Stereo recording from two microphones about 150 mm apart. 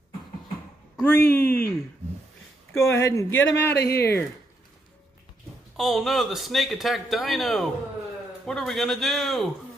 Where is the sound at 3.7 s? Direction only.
90° left.